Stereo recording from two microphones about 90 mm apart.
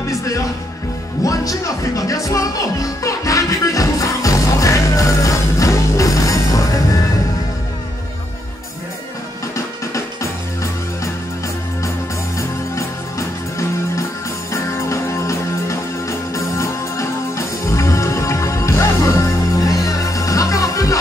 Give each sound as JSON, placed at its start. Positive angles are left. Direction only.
{"t": 0.1, "sound": "music", "side_deg": 35}
{"t": 9.9, "sound": "music", "side_deg": 35}
{"t": 14.5, "sound": "music", "side_deg": 35}